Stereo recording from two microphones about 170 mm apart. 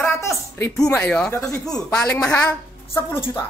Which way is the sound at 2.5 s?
20° left (ahead or behind).